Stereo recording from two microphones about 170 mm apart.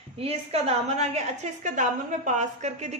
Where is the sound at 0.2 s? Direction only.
35° right (ahead or behind).